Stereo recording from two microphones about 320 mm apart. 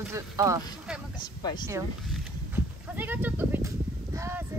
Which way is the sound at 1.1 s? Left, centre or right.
Centre.